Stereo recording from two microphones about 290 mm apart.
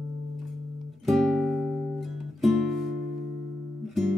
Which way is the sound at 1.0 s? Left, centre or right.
Centre.